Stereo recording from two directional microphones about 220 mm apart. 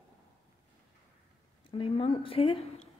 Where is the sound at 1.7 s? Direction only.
25° left (ahead or behind).